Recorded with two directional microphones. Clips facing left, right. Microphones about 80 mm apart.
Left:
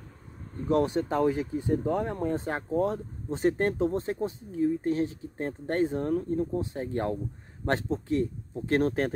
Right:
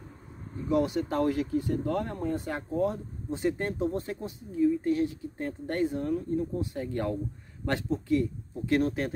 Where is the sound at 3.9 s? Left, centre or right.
Left.